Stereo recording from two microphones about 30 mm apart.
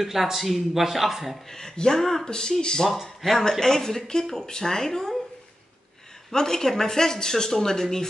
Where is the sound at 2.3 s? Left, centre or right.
Left.